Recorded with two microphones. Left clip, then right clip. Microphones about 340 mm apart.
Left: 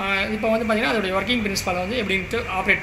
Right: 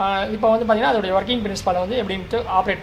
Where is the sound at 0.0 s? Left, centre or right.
Right.